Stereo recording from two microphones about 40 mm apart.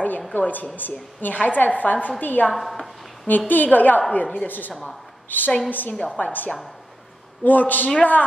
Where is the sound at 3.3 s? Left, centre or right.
Left.